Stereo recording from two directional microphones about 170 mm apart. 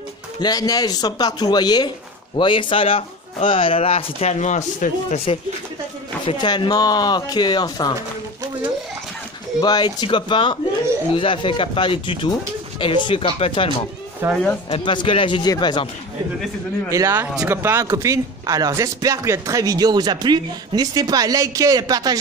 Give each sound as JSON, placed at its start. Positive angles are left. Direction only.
{"t": 0.4, "sound": "speech", "side_deg": 20}
{"t": 6.2, "sound": "speech", "side_deg": 25}
{"t": 9.6, "sound": "speech", "side_deg": 25}
{"t": 14.2, "sound": "speech", "side_deg": -15}
{"t": 14.7, "sound": "speech", "side_deg": 30}
{"t": 16.9, "sound": "speech", "side_deg": -15}